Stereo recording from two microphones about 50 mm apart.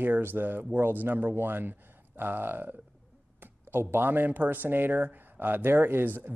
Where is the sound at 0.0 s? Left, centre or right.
Right.